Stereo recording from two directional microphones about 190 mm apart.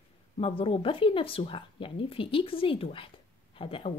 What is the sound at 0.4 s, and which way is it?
A woman's voice, 30° left (ahead or behind).